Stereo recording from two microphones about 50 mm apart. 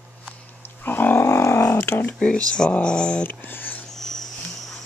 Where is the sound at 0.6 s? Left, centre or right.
Left.